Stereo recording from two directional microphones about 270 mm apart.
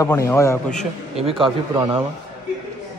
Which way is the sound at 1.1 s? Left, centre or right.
Centre.